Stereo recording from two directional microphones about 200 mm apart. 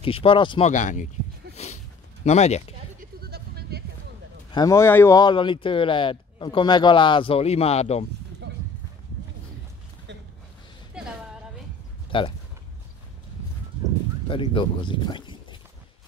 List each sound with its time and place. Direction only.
0.0 s speech: 25° left (ahead or behind)
0.7 s speech: 40° left (ahead or behind)
1.5 s a sound: 35° left (ahead or behind)
2.2 s speech: 35° left (ahead or behind)
3.0 s sheep: 50° right (ahead or behind)
4.5 s speech: 20° left (ahead or behind)
12.1 s speech: 25° left (ahead or behind)
14.2 s speech: 25° left (ahead or behind)